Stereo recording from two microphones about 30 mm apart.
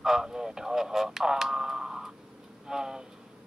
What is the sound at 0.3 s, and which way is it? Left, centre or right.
Radio, right.